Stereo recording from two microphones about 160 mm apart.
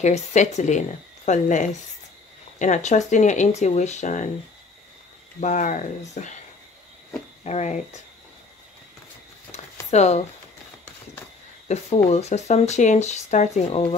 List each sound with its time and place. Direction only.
0.0 s speech: 45° left (ahead or behind)
5.4 s speech: 50° left (ahead or behind)
7.4 s speech: 45° left (ahead or behind)
9.5 s a sound: 45° left (ahead or behind)
11.6 s speech: 45° left (ahead or behind)